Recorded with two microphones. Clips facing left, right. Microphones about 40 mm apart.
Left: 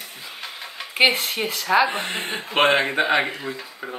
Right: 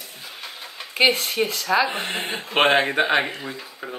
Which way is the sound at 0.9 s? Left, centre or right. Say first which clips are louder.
Even; centre.